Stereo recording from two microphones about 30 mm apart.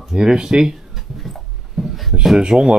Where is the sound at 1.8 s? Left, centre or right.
Centre.